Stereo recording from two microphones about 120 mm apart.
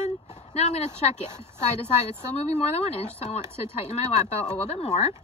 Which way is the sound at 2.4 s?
60° left (ahead or behind).